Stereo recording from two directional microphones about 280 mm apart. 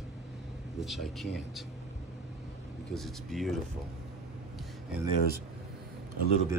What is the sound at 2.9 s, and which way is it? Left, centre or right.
Speech, centre.